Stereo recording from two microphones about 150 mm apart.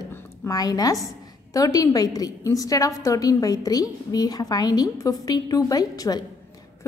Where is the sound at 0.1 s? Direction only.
20° left (ahead or behind).